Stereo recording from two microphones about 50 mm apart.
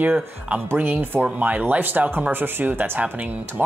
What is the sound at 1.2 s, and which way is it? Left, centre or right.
Speech, right.